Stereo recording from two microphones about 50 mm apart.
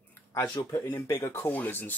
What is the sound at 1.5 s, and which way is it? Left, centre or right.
Speech, left.